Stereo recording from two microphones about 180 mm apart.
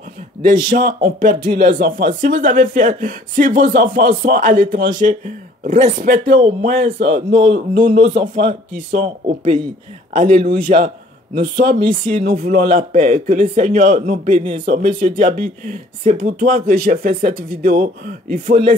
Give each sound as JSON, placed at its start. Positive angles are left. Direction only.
{"t": 0.5, "sound": "speech", "side_deg": -45}
{"t": 6.9, "sound": "speech", "side_deg": -35}
{"t": 7.7, "sound": "speech", "side_deg": -45}
{"t": 12.2, "sound": "speech", "side_deg": -55}
{"t": 14.3, "sound": "speech", "side_deg": -30}
{"t": 14.7, "sound": "speech", "side_deg": -50}